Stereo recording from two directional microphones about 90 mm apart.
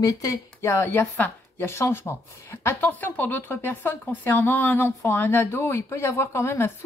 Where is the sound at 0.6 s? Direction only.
25° left (ahead or behind).